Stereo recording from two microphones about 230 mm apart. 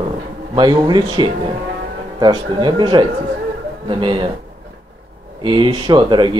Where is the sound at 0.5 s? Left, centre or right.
Centre.